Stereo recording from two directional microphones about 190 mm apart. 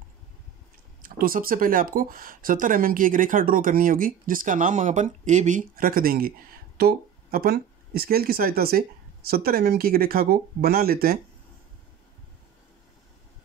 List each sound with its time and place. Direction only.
1.0 s speech: 50° right (ahead or behind)